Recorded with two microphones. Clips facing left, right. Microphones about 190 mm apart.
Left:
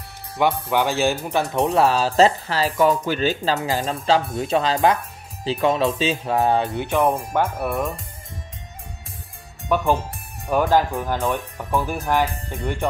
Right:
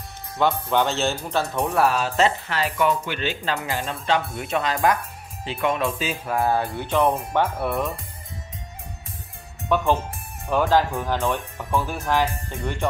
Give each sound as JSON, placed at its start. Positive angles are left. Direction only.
{"t": 0.4, "sound": "speech", "side_deg": 10}
{"t": 7.6, "sound": "speech", "side_deg": 0}
{"t": 9.7, "sound": "speech", "side_deg": 10}